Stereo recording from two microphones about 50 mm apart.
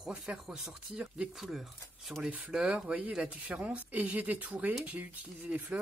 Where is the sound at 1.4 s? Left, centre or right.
Centre.